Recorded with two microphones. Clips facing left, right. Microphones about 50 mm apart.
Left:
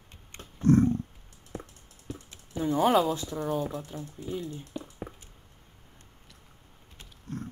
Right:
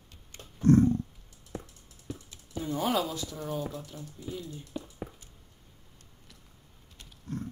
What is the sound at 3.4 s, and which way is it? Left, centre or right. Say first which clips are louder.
Speech: left 5 dB; centre.